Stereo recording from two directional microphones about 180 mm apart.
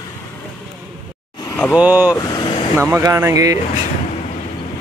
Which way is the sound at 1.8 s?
10° right (ahead or behind).